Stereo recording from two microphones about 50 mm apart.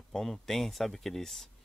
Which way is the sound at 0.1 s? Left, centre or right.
Centre.